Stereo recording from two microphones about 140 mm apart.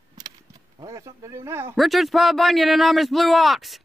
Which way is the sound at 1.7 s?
Centre (ahead or behind).